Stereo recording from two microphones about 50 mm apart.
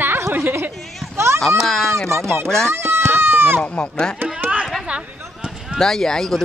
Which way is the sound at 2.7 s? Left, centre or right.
Right.